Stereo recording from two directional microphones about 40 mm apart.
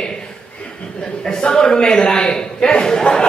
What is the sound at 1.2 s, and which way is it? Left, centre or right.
A man's voice, centre.